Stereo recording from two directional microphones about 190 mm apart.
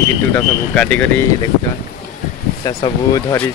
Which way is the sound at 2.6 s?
20° left (ahead or behind).